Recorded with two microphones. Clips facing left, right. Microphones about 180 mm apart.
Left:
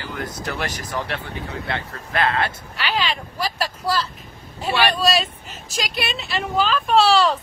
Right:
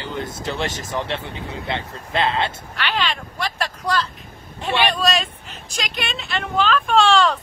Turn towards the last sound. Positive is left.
turn(degrees=5)  # may be behind; listen again after turning